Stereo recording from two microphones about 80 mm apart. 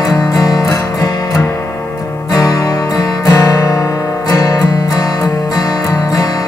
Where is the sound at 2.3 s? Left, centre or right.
Left.